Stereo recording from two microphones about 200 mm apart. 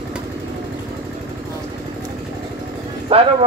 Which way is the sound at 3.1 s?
30° right (ahead or behind).